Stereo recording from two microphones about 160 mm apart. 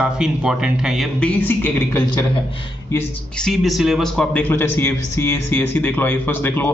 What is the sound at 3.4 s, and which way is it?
A man's voice, centre (ahead or behind).